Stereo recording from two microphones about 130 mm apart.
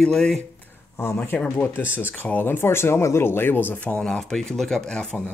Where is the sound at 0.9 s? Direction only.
20° left (ahead or behind).